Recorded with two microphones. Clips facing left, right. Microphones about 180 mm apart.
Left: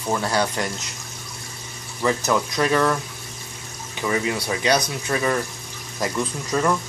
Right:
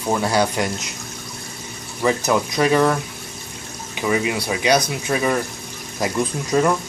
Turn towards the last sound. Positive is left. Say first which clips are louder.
# right 4 dB
turn(degrees=-15)  # may be behind; listen again after turning